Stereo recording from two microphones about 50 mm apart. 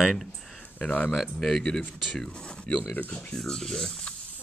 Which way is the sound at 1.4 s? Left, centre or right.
Centre.